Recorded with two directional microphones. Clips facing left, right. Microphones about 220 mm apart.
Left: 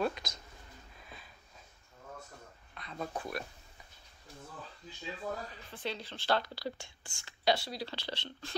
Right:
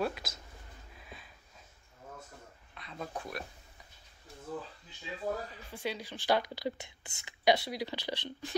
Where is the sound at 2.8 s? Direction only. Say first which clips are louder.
Left 2 dB; centre (ahead or behind).